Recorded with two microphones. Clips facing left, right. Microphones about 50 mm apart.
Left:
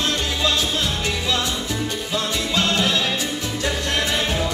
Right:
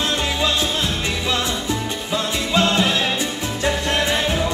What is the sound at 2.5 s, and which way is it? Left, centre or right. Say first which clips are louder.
Music: right 4 dB; right.